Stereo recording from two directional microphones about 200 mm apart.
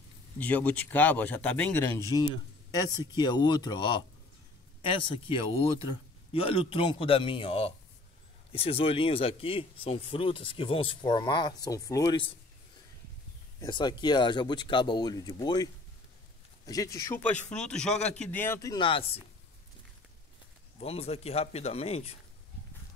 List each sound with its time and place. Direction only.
0.4 s speech: 10° left (ahead or behind)
1.9 s speech: 20° left (ahead or behind)
13.6 s a man's voice: 20° left (ahead or behind)
20.8 s speech: 30° left (ahead or behind)